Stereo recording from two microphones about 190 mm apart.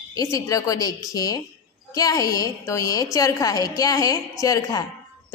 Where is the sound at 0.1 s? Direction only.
15° left (ahead or behind).